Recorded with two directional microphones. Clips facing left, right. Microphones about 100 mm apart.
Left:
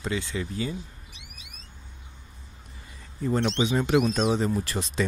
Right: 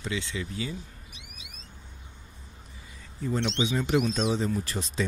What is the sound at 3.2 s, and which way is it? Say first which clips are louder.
Speech: left 3 dB; 50° left (ahead or behind).